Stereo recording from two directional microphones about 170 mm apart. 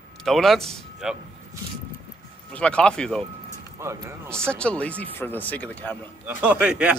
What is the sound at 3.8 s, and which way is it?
Speech, 15° right (ahead or behind).